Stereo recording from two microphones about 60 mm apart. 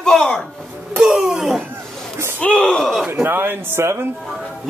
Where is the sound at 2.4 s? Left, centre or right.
Centre.